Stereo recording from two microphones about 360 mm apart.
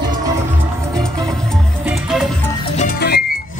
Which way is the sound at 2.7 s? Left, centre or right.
Left.